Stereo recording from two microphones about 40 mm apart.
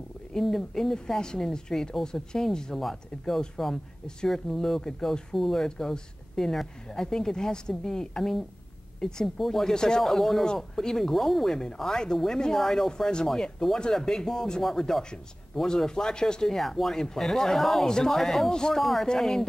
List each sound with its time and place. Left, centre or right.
0.3 s a woman's voice: centre
9.8 s a woman's voice: centre
10.0 s speech: centre
10.4 s a woman's voice: centre
16.5 s a woman's voice: centre
17.8 s a woman's voice: centre
18.1 s speech: centre
18.5 s a woman's voice: centre
18.8 s a woman's voice: centre